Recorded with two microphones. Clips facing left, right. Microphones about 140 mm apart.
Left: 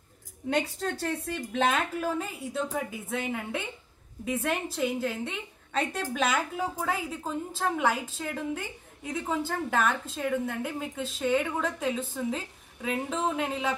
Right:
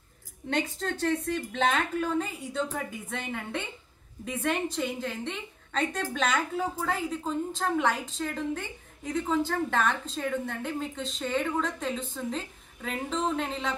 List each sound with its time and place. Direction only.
0.5 s a woman's voice: 10° left (ahead or behind)